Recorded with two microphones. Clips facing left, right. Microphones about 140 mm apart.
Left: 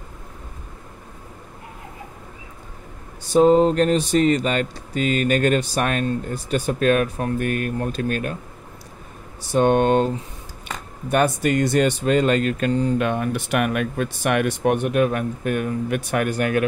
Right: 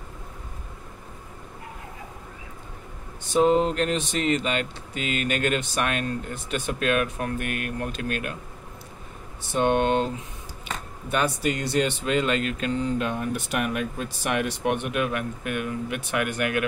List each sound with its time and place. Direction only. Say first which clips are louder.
3.3 s speech: left 6 dB; 40° left (ahead or behind)
9.5 s speech: left 5 dB; 45° left (ahead or behind)
11.1 s speech: left 6 dB; 50° left (ahead or behind)
13.0 s speech: left 5 dB; 65° left (ahead or behind); by 16.6 s 35° left (ahead or behind)